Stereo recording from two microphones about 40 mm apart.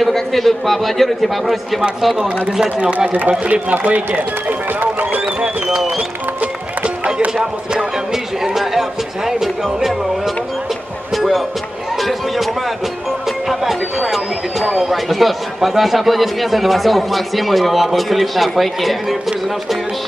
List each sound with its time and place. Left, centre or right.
0.0 s a man's voice: centre
3.1 s speech: right
3.8 s run: right
7.7 s a man's voice: centre
11.1 s music: centre
12.0 s a sound: centre
13.5 s a sound: centre
14.9 s a man's voice: centre